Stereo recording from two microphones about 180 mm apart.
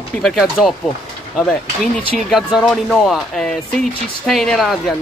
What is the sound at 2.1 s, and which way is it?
Speech, centre (ahead or behind).